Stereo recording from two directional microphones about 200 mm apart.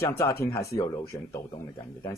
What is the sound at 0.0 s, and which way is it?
Speech, 15° left (ahead or behind).